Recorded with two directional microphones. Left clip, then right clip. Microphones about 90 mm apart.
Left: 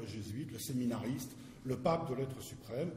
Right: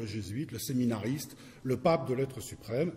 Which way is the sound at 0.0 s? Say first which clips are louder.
Right 6 dB; 35° right (ahead or behind).